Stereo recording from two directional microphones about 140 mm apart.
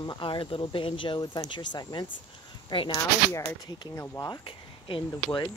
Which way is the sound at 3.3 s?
20° left (ahead or behind).